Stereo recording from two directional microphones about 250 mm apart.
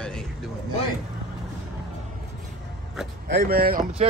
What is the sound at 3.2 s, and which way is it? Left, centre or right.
Speech, right.